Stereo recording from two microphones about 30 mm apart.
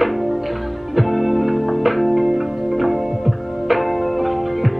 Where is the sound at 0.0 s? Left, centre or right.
Centre.